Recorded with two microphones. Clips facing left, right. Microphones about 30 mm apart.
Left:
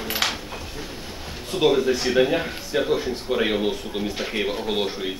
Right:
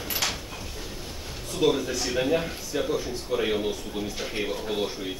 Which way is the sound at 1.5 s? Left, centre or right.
Left.